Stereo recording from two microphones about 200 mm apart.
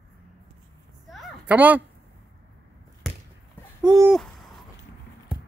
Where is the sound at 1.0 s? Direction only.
5° right (ahead or behind).